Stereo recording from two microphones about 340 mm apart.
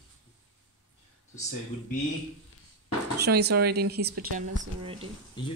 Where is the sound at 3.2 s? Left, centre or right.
Right.